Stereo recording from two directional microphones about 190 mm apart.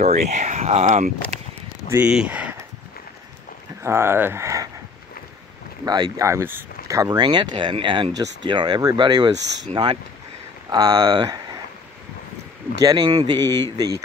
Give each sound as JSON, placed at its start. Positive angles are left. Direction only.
{"t": 0.0, "sound": "speech", "side_deg": -35}
{"t": 1.9, "sound": "speech", "side_deg": -5}
{"t": 3.8, "sound": "speech", "side_deg": -15}
{"t": 5.9, "sound": "speech", "side_deg": -20}
{"t": 12.8, "sound": "speech", "side_deg": -20}